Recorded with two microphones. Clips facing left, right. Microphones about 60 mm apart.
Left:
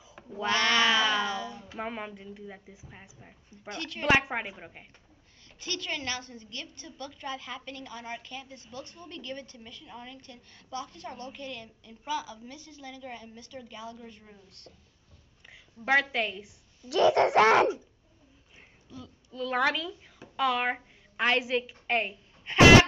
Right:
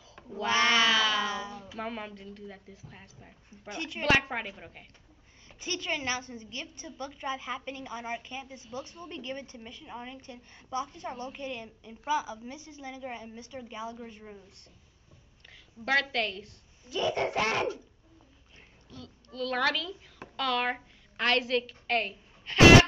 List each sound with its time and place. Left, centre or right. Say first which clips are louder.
0.5 s speech: right 1 dB; right
0.8 s cat: left 1 dB; left
1.2 s a sound: left 1 dB; right
1.8 s a woman's voice: left 1 dB; centre
3.7 s a woman's voice: right 1 dB; centre
4.0 s a woman's voice: left 1 dB; centre
5.6 s a woman's voice: right 2 dB; right
15.4 s a woman's voice: left 2 dB; centre
16.9 s laughter: left 8 dB; left
18.9 s a child's voice: left 1 dB; centre